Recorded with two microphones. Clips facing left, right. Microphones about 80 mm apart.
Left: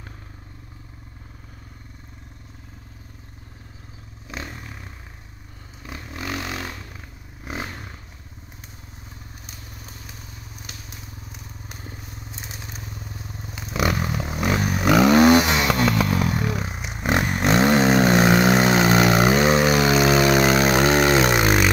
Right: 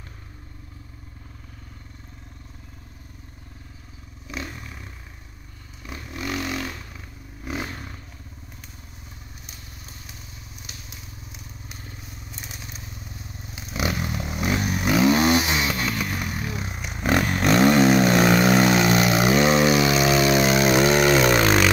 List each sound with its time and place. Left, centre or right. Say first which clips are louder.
4.3 s a sound: even; left
5.9 s vehicle: right 1 dB; left
12.3 s crushing: left 1 dB; left
12.7 s motorcycle: left 3 dB; left
13.9 s vehicle: left 3 dB; left
14.4 s a sound: left 2 dB; left
14.9 s a sound: left 5 dB; left
15.5 s motorcycle: left 5 dB; left
16.6 s vehicle: even; left
21.4 s vehicle: even; centre